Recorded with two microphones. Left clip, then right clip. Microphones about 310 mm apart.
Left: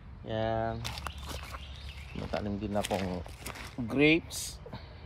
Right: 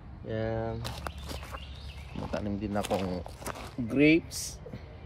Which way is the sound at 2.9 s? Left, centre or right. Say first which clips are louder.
Right 4 dB; left.